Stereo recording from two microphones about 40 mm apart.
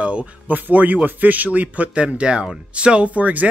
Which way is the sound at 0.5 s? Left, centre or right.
Right.